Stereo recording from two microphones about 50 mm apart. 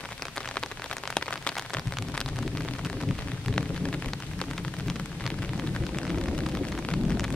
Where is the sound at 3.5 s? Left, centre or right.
Centre.